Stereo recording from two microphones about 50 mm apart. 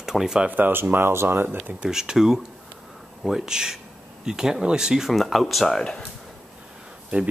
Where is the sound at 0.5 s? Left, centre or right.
Right.